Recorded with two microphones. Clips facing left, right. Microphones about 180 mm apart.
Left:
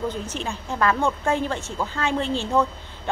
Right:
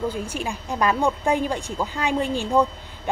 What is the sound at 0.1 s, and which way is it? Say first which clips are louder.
Speech: right 1 dB; 10° right (ahead or behind).